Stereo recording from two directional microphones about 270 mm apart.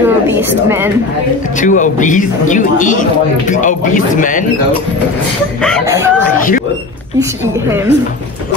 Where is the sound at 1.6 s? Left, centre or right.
Left.